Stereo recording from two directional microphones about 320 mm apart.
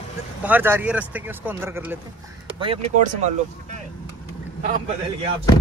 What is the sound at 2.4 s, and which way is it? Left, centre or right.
Speech, centre.